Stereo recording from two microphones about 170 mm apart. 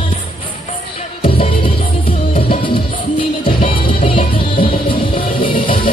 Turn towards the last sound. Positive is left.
turn(degrees=30)  # may be behind; listen again after turning